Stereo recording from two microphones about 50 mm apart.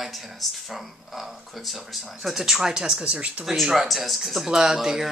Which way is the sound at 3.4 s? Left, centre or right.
Centre.